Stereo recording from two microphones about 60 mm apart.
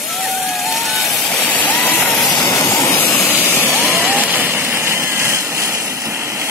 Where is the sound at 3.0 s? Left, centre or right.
Left.